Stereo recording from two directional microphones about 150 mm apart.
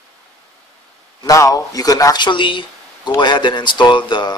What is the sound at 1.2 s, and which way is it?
Speech, 25° left (ahead or behind).